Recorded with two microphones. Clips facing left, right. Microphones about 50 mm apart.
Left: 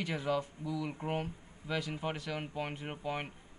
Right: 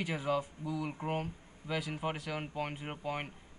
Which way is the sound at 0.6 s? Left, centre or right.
Right.